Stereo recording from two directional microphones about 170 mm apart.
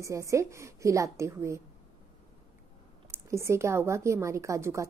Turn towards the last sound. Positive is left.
turn(degrees=-15)  # may be behind; listen again after turning